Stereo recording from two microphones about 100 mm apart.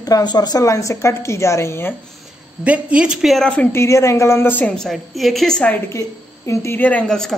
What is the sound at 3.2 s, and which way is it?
Speech, centre (ahead or behind).